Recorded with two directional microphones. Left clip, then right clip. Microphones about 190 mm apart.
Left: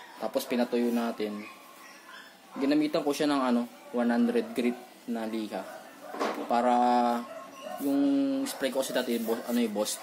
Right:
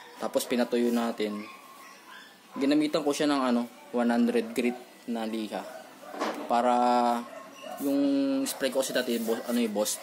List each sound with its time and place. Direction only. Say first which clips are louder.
0.2 s speech: right 1 dB; 20° right (ahead or behind)
2.6 s a man's voice: right 1 dB; 20° right (ahead or behind)